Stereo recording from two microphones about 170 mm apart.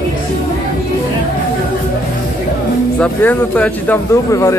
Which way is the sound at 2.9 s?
5° left (ahead or behind).